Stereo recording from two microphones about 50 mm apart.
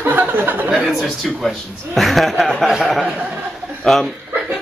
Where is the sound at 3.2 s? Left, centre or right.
Right.